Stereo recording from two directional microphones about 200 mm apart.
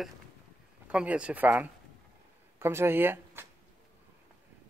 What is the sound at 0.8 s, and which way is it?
Speech, 5° right (ahead or behind).